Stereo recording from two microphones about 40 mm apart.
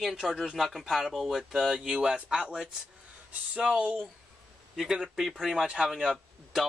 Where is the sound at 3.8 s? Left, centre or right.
Right.